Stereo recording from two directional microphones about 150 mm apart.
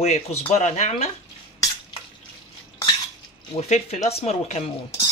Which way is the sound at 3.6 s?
45° left (ahead or behind).